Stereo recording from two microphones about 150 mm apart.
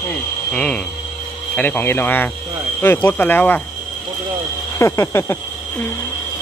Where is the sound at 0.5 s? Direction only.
10° left (ahead or behind).